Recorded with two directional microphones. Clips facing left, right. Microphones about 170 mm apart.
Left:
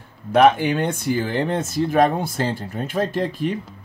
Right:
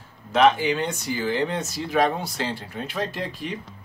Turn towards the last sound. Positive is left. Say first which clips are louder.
# left 8 dB
turn(degrees=50)  # may be behind; listen again after turning